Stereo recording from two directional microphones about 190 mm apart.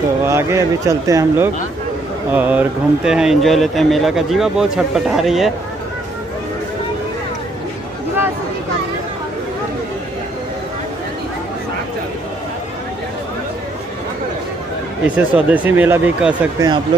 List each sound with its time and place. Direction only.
0.2 s speech: 15° right (ahead or behind)
15.1 s speech: 10° right (ahead or behind)
16.5 s speech: 20° right (ahead or behind)